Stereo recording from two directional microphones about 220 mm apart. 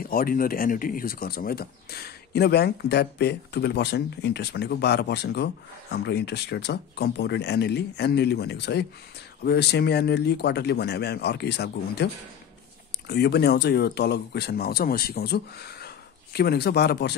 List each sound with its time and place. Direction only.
0.0 s speech: 40° left (ahead or behind)